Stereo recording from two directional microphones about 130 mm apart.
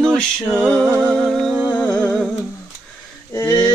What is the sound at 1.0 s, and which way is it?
Music, 5° left (ahead or behind).